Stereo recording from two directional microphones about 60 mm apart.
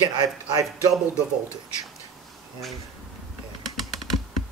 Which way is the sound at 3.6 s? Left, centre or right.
Centre.